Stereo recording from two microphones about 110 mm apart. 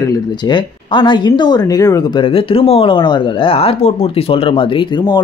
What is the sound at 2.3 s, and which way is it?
Speech, 55° left (ahead or behind).